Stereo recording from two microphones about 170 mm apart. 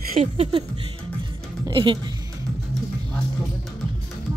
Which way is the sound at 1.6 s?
30° right (ahead or behind).